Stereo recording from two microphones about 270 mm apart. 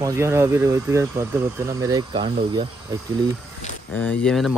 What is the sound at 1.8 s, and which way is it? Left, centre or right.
Speech, centre.